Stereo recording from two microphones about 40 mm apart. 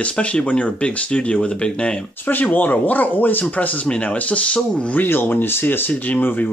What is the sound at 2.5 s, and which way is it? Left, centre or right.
Speech, left.